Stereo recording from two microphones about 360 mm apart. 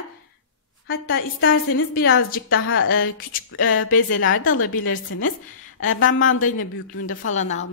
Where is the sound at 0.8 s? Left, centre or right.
Left.